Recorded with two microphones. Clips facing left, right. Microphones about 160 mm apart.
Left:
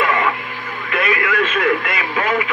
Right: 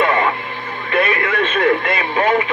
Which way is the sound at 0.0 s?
30° right (ahead or behind).